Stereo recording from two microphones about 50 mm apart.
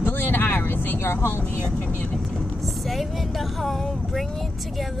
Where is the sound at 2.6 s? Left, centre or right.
Centre.